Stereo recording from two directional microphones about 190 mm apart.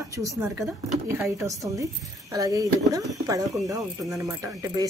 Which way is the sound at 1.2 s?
15° right (ahead or behind).